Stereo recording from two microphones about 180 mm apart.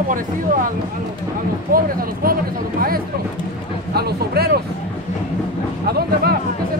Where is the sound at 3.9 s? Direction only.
60° right (ahead or behind).